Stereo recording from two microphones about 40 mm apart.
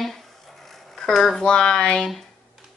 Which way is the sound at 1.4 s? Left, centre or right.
Left.